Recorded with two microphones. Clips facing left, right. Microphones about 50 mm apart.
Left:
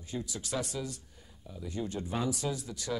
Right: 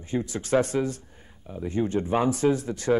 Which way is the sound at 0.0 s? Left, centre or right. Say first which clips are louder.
Right 10 dB; right.